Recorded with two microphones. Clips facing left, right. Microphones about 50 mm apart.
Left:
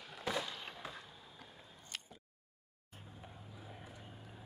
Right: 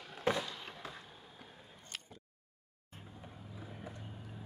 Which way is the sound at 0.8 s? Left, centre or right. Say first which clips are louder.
Even; centre.